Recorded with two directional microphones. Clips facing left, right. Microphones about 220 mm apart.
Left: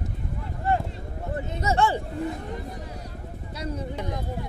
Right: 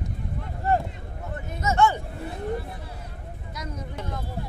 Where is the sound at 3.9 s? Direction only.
15° left (ahead or behind).